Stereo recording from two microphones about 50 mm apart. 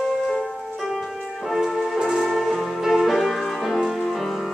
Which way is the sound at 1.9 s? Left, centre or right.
Centre.